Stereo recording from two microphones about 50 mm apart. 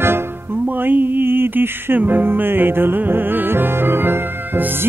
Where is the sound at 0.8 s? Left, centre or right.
Right.